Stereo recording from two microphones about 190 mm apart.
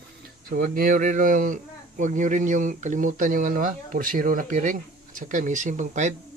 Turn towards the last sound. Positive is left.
turn(degrees=-40)  # may be behind; listen again after turning